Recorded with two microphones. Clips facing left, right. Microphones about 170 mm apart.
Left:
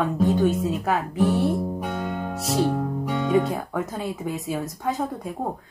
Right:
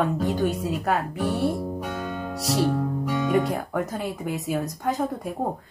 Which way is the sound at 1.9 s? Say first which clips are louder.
Left 2 dB; 20° left (ahead or behind).